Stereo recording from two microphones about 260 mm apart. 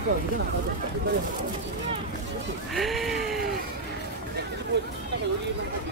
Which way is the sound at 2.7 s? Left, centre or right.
Centre.